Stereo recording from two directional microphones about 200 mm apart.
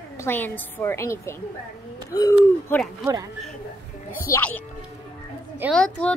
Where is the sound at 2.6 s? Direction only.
5° left (ahead or behind).